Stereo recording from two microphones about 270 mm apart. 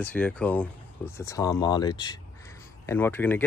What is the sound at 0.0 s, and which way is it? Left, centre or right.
Speech, centre.